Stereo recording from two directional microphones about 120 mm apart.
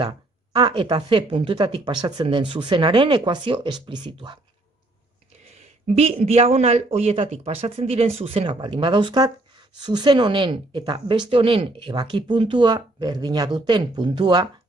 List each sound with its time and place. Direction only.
0.0 s speech: 40° right (ahead or behind)
2.2 s speech: 45° right (ahead or behind)
5.9 s speech: 60° right (ahead or behind); by 14.5 s 35° right (ahead or behind)